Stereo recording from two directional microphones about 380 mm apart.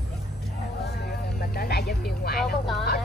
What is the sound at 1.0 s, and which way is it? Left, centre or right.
Vehicle, left.